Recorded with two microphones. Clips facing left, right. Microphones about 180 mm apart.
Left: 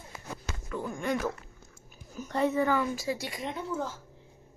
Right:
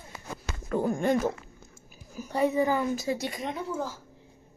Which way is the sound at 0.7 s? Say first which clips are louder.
Right 7 dB; 40° right (ahead or behind).